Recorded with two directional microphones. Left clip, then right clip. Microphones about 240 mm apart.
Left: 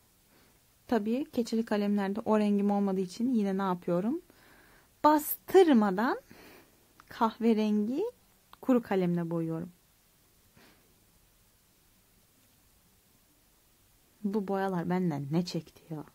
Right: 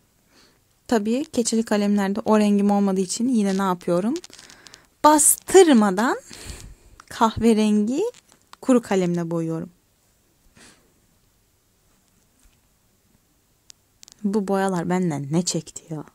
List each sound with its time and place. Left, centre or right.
0.8 s speech: right
10.5 s a sound: centre
14.2 s speech: right